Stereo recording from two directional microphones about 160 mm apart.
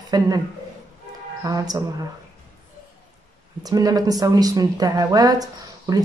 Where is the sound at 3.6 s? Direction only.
25° right (ahead or behind).